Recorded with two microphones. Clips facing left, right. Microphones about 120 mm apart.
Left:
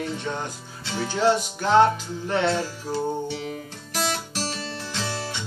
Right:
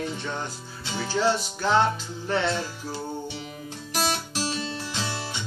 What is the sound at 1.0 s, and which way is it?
Music, 15° left (ahead or behind).